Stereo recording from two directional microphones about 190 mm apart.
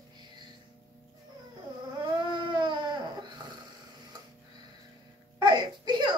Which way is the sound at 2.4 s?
25° right (ahead or behind).